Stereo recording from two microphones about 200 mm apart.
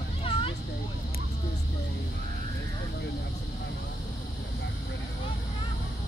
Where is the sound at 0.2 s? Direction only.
25° left (ahead or behind).